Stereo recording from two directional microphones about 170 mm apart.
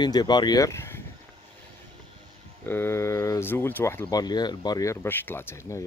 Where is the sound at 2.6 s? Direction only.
15° left (ahead or behind).